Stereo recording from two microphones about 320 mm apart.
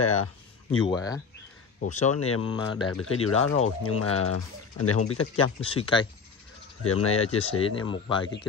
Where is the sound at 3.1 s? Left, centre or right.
Left.